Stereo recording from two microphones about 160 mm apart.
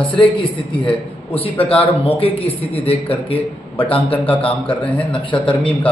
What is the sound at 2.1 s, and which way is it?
A man's voice, 35° left (ahead or behind).